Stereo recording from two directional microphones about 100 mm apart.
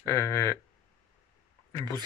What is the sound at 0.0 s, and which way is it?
Speech, 30° left (ahead or behind).